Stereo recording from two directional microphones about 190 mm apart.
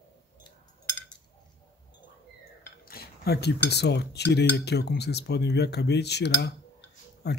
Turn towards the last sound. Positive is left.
turn(degrees=60)  # may be behind; listen again after turning